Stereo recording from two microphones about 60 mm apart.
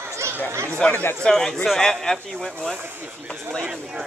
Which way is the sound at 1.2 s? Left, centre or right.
Centre.